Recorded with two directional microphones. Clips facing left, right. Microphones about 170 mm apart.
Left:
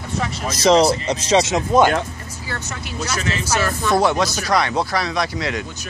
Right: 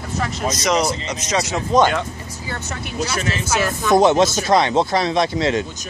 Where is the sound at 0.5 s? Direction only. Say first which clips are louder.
Left 6 dB; 30° left (ahead or behind).